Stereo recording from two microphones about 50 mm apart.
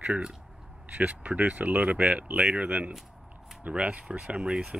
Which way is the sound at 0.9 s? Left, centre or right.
Right.